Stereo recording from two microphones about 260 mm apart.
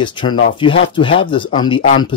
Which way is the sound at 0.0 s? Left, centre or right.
Centre.